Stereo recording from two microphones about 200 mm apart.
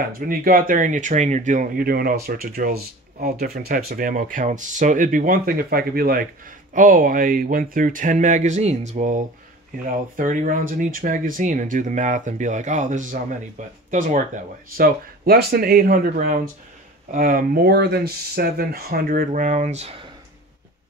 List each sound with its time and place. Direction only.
0.1 s speech: 45° right (ahead or behind)